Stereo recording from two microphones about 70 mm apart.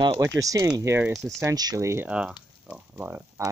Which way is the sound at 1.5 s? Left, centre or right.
Right.